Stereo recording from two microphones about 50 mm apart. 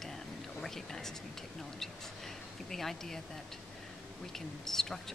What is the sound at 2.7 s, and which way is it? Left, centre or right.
Speech, centre.